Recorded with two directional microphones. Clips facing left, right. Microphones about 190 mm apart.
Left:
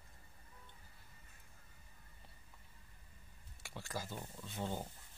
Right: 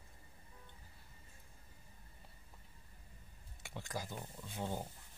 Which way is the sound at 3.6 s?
15° right (ahead or behind).